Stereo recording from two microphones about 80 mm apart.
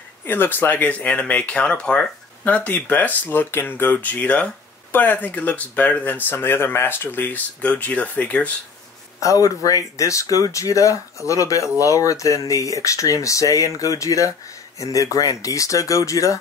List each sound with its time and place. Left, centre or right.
0.2 s speech: left
9.2 s speech: left